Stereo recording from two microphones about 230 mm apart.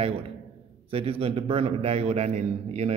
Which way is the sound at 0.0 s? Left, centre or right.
Right.